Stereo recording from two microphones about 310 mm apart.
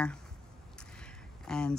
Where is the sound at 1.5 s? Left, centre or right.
Centre.